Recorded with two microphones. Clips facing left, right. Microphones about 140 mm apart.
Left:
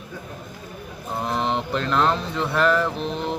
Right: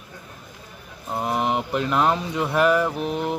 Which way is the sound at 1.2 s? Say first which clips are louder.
Right 1 dB; 10° right (ahead or behind).